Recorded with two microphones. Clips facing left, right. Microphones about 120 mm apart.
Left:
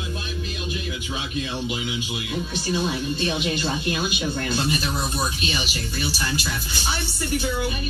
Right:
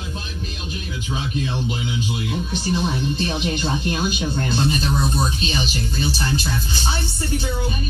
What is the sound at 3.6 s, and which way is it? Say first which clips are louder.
Speech: right 2 dB; 45° right (ahead or behind).